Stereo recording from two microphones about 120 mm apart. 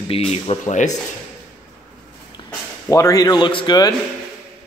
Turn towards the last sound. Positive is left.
turn(degrees=35)  # may be behind; listen again after turning